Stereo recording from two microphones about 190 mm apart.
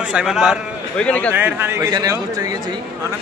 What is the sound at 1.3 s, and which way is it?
Speech, 10° right (ahead or behind).